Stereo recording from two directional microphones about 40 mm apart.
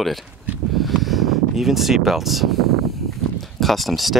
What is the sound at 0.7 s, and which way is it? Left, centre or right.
Vehicle, centre.